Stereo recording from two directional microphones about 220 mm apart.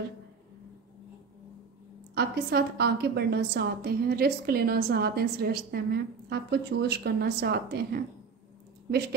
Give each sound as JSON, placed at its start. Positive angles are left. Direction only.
{"t": 2.1, "sound": "a woman's voice", "side_deg": -45}